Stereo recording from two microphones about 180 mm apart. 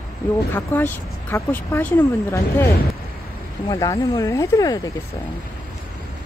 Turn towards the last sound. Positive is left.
turn(degrees=20)  # may be behind; listen again after turning